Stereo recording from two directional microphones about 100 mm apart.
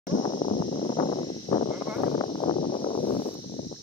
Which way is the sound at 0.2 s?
65° left (ahead or behind).